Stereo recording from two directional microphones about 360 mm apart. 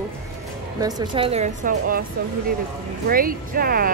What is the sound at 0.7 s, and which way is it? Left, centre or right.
Speech, centre.